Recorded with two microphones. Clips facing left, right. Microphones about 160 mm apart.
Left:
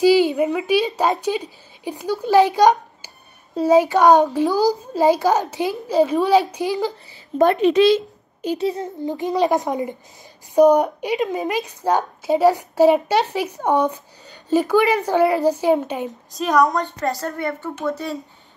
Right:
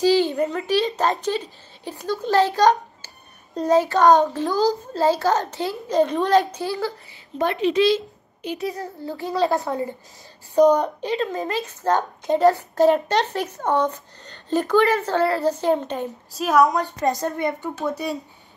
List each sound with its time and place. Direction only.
0.0 s a woman's voice: 10° left (ahead or behind)
7.3 s a woman's voice: 50° left (ahead or behind)
8.5 s a woman's voice: 25° left (ahead or behind)
16.3 s a woman's voice: 5° right (ahead or behind)
17.0 s a woman's voice: 20° right (ahead or behind)